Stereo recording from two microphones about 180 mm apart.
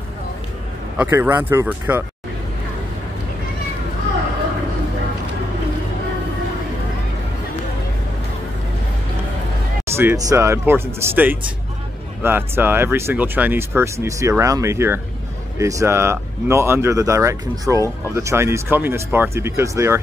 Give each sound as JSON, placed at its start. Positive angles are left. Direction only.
{"t": 0.9, "sound": "speech", "side_deg": -10}
{"t": 9.9, "sound": "speech", "side_deg": -15}